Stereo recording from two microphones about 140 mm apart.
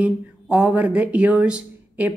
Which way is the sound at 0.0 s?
10° right (ahead or behind).